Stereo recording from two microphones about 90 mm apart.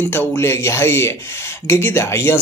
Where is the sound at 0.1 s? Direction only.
30° left (ahead or behind).